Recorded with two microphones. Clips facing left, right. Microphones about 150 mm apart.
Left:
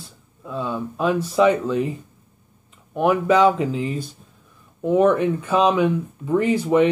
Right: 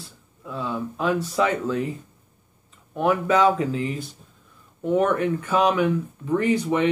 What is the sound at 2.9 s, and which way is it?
Speech, 15° left (ahead or behind).